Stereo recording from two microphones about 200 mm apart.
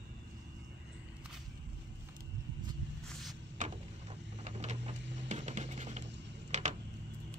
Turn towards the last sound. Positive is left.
turn(degrees=-35)  # may be behind; listen again after turning